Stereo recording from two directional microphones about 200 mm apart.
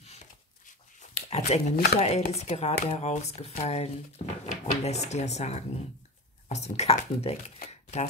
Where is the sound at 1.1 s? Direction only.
35° left (ahead or behind).